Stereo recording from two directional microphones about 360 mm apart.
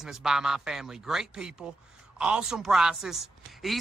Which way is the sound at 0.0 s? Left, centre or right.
Centre.